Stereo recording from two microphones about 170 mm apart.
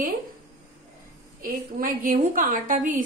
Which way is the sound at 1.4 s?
55° right (ahead or behind).